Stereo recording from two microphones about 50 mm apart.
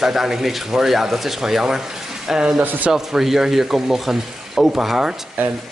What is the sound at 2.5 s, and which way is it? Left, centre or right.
Speech, right.